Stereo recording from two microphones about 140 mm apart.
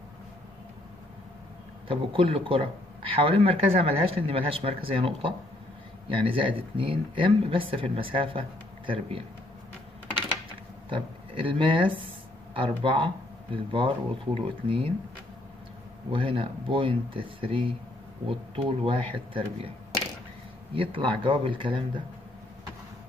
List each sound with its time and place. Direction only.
1.9 s speech: 40° right (ahead or behind)
10.9 s speech: 40° right (ahead or behind)
16.1 s speech: 40° right (ahead or behind)
20.7 s speech: 40° right (ahead or behind)